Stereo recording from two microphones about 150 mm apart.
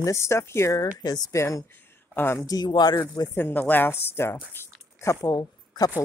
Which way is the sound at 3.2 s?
15° left (ahead or behind).